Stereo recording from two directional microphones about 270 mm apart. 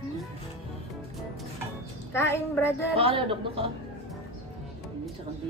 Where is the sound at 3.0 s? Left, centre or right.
Centre.